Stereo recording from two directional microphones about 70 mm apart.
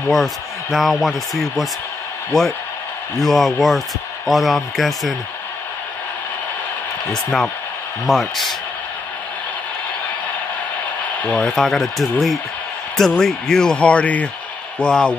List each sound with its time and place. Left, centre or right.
0.1 s speech: centre
7.1 s speech: centre
11.2 s speech: centre
11.5 s speech: centre